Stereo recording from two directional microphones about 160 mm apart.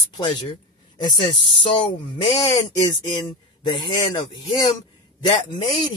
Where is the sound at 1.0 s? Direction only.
30° left (ahead or behind).